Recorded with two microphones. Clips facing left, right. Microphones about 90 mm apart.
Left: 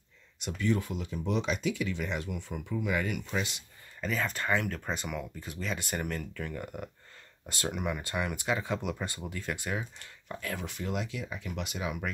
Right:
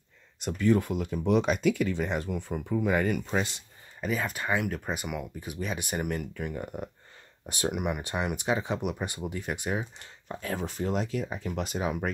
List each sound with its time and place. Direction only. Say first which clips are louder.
0.4 s speech: right 6 dB; 45° right (ahead or behind)
4.0 s speech: right 2 dB; 5° right (ahead or behind)
10.5 s speech: right 6 dB; 35° right (ahead or behind)